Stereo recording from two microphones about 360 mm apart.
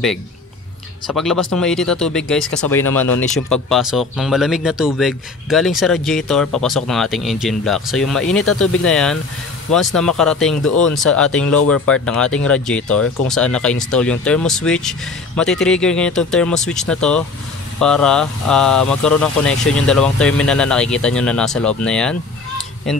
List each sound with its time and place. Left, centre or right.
1.0 s speech: centre
8.5 s speech: left
8.8 s speech: centre
11.4 s speech: left
11.9 s speech: centre